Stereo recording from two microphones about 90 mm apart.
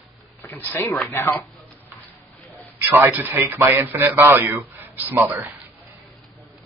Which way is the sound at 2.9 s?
25° right (ahead or behind).